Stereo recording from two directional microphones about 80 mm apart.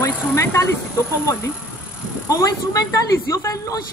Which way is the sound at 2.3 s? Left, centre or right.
Left.